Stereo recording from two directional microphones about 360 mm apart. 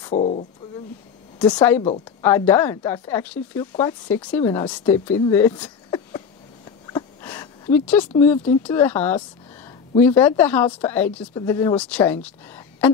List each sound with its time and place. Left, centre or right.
0.0 s speech: centre
1.4 s speech: centre